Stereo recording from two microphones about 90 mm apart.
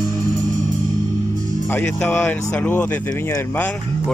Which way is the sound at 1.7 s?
15° left (ahead or behind).